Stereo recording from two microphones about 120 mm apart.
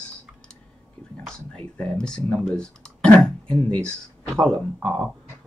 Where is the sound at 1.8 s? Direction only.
5° left (ahead or behind).